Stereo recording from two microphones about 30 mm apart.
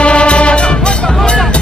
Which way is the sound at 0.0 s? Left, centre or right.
Left.